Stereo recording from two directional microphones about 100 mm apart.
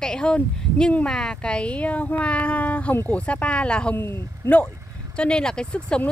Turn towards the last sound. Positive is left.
turn(degrees=10)  # may be behind; listen again after turning